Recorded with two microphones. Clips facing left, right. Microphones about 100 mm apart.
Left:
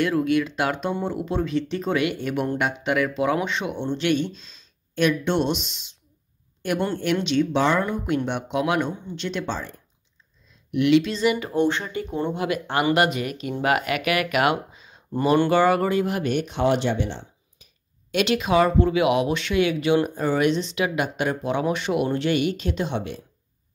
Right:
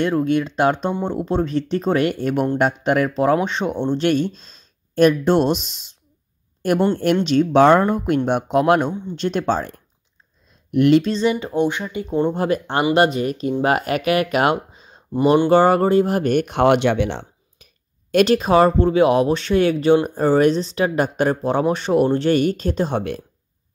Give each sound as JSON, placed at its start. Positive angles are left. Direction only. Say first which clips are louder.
{"t": 0.0, "sound": "speech", "louder": "right 2 dB", "side_deg": -35}
{"t": 7.2, "sound": "speech", "louder": "right 9 dB", "side_deg": -45}
{"t": 12.1, "sound": "speech", "louder": "right 7 dB", "side_deg": -30}
{"t": 18.1, "sound": "speech", "louder": "right 6 dB", "side_deg": -40}